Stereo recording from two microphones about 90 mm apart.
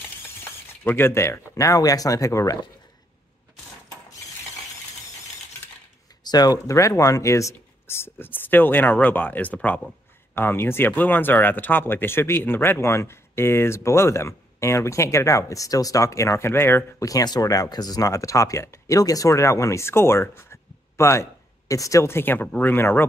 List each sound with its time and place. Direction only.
0.4 s speech: 25° left (ahead or behind)
6.2 s speech: 45° left (ahead or behind); by 16.8 s 25° left (ahead or behind)
17.0 s speech: 45° left (ahead or behind); by 23.0 s 25° left (ahead or behind)